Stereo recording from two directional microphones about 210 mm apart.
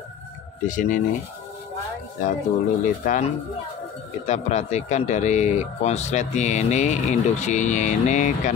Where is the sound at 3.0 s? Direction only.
40° left (ahead or behind).